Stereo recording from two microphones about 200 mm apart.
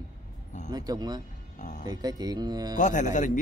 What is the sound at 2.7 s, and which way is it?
Speech, 40° left (ahead or behind).